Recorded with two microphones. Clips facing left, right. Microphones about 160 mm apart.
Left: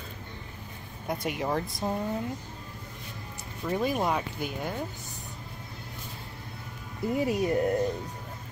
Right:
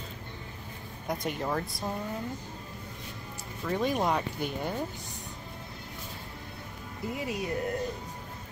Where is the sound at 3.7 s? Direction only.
5° left (ahead or behind).